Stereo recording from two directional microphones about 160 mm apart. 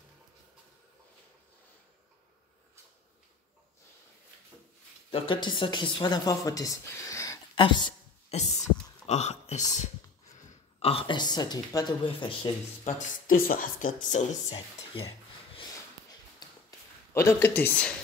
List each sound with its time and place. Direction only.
5.1 s speech: 35° left (ahead or behind)
7.5 s a sound: 30° left (ahead or behind)
8.4 s a woman's voice: 45° left (ahead or behind)
12.8 s speech: 60° left (ahead or behind)
14.9 s speech: 35° left (ahead or behind)
17.1 s speech: 15° left (ahead or behind)